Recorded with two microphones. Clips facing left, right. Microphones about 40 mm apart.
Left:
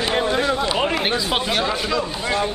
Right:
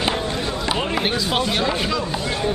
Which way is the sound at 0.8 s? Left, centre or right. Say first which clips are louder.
Left 1 dB; centre.